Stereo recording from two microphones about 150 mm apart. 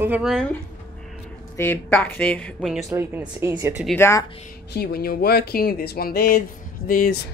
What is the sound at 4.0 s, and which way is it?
Speech, 20° left (ahead or behind).